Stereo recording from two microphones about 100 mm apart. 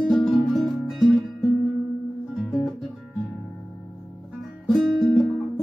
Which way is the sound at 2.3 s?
Centre (ahead or behind).